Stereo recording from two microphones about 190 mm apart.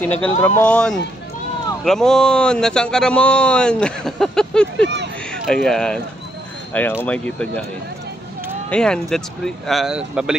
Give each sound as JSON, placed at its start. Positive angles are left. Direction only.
{"t": 0.0, "sound": "speech", "side_deg": 10}
{"t": 8.6, "sound": "speech", "side_deg": 5}